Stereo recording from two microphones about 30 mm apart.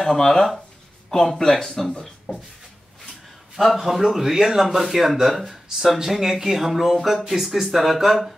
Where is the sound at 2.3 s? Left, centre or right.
Left.